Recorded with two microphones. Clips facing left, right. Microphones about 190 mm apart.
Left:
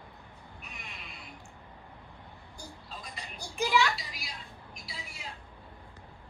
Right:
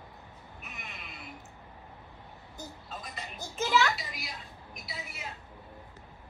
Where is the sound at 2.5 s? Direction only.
20° right (ahead or behind).